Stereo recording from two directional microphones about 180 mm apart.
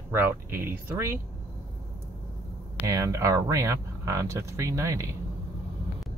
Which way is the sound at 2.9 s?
15° right (ahead or behind).